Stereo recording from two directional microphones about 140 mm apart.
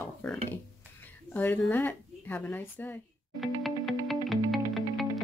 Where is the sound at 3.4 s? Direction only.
Centre (ahead or behind).